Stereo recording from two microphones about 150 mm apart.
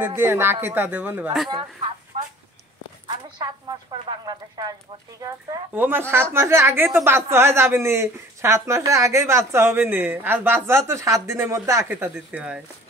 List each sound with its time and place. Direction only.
0.0 s speech: 15° right (ahead or behind)
2.1 s a sound: 40° right (ahead or behind)
3.9 s speech: 25° right (ahead or behind)
5.8 s speech: 15° right (ahead or behind)